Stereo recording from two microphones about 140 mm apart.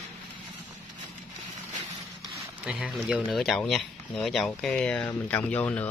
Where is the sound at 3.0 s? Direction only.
5° right (ahead or behind).